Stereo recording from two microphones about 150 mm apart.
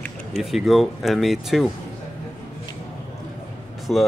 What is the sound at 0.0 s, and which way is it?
Speech, centre (ahead or behind).